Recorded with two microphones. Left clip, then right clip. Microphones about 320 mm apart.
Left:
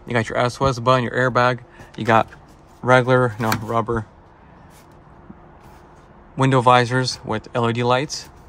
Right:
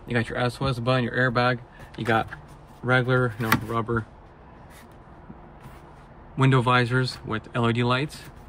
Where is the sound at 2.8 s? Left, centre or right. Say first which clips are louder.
Left 8 dB; left.